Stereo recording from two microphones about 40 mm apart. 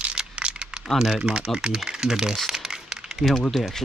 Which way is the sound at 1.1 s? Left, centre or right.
Right.